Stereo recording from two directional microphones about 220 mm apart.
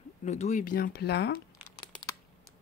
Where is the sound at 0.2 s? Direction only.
35° left (ahead or behind); by 1.4 s 50° left (ahead or behind).